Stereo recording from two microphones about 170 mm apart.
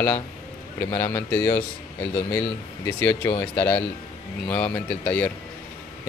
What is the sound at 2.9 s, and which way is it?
Speech, 10° left (ahead or behind).